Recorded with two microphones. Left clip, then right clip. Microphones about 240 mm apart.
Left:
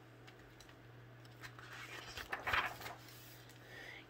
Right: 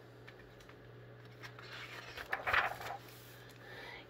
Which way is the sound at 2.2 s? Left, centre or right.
Left.